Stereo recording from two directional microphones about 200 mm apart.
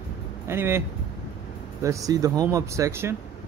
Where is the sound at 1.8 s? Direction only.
15° right (ahead or behind).